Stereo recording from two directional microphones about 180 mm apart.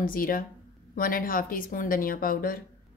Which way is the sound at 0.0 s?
50° left (ahead or behind).